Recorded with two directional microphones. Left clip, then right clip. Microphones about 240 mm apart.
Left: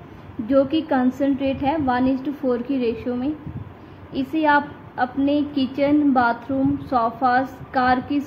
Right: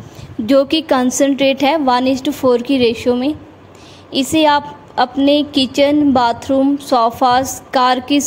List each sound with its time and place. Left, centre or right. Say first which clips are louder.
0.5 s a woman's voice: right 6 dB; right